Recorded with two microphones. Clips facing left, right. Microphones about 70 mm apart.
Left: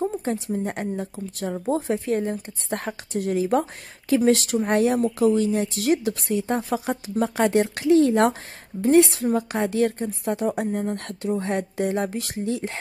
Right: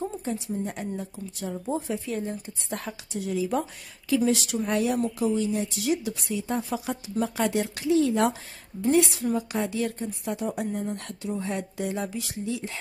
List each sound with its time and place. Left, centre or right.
0.5 s a woman's voice: left